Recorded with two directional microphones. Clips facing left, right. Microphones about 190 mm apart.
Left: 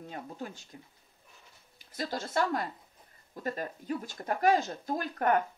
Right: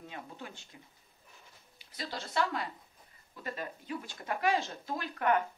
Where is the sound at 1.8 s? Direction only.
45° left (ahead or behind).